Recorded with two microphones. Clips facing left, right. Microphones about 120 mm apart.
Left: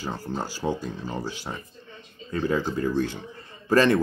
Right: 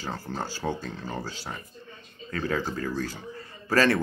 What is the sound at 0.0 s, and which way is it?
Speech, 15° left (ahead or behind).